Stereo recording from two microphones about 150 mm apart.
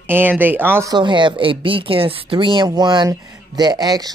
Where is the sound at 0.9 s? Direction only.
30° right (ahead or behind).